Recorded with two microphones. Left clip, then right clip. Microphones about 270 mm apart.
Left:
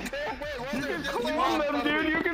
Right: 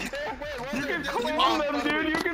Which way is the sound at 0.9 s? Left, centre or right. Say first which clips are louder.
Right 3 dB; right.